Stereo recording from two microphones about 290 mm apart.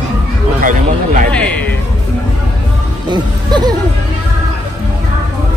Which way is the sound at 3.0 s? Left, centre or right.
Centre.